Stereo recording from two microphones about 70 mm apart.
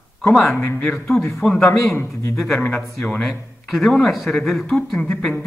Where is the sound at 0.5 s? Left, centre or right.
Left.